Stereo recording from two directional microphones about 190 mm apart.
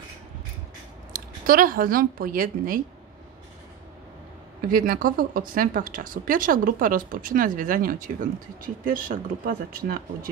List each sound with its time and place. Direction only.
1.1 s a woman's voice: 50° right (ahead or behind)
4.6 s speech: 50° right (ahead or behind)